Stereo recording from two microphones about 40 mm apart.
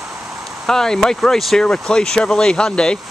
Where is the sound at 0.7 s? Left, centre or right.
Centre.